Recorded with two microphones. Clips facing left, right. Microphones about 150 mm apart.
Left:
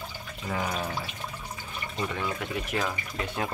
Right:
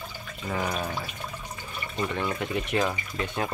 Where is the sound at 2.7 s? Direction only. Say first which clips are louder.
Right 4 dB; centre (ahead or behind).